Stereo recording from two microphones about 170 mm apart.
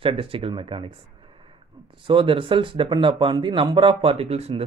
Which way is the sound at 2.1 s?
30° right (ahead or behind).